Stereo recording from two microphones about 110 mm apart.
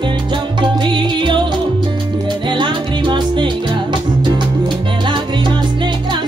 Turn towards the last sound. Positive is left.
turn(degrees=-45)  # may be behind; listen again after turning